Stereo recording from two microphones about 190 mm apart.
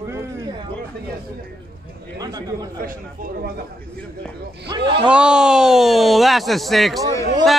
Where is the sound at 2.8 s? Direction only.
45° right (ahead or behind).